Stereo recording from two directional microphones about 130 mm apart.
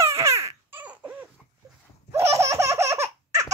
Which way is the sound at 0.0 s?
20° right (ahead or behind).